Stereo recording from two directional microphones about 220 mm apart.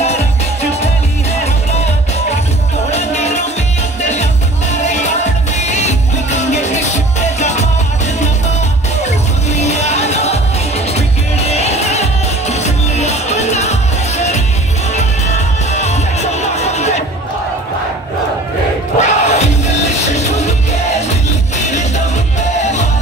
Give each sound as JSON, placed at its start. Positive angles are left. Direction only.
{"t": 2.9, "sound": "music", "side_deg": 30}
{"t": 5.6, "sound": "music", "side_deg": 30}
{"t": 9.5, "sound": "music", "side_deg": 30}
{"t": 15.7, "sound": "music", "side_deg": 30}
{"t": 18.9, "sound": "music", "side_deg": 30}